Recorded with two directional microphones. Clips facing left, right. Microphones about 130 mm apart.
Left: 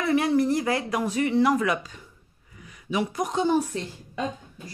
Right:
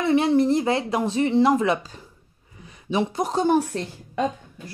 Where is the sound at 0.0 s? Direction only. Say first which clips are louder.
Right 3 dB; 25° right (ahead or behind).